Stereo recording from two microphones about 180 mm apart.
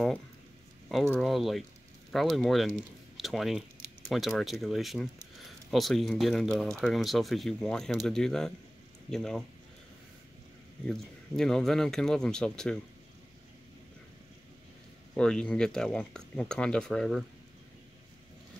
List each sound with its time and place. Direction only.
1.1 s speech: centre (ahead or behind)
10.9 s speech: 5° left (ahead or behind)
15.1 s speech: 5° left (ahead or behind)